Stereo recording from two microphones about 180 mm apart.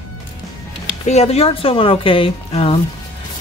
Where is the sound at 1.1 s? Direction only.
35° left (ahead or behind).